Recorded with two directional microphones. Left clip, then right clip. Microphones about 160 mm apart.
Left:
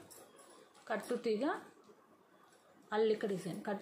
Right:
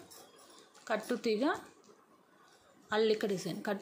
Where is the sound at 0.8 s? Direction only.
35° right (ahead or behind).